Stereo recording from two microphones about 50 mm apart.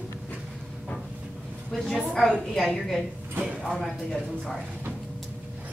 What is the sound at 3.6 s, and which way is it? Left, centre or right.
Speech, centre.